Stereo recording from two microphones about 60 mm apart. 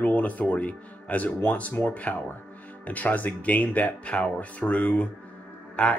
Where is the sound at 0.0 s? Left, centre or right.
Left.